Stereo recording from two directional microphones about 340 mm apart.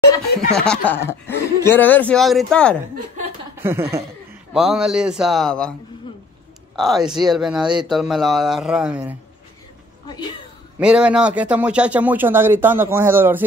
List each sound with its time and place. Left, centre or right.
0.3 s speech: left
0.7 s speech: centre
3.5 s chuckle: centre
4.6 s speech: centre
10.0 s a woman's voice: centre
10.8 s a man's voice: centre